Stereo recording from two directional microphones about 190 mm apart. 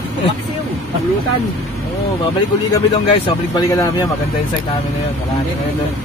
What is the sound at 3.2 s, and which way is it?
Speech, 20° left (ahead or behind).